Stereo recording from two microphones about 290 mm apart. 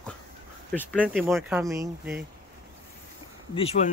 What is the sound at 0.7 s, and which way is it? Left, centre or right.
Speech, centre.